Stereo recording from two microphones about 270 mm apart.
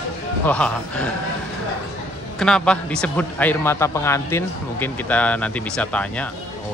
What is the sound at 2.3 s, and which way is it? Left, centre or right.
Speech, centre.